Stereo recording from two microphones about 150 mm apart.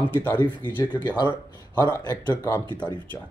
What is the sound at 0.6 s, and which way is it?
Speech, 30° left (ahead or behind).